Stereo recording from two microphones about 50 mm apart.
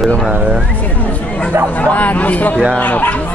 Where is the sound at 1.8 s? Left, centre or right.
Left.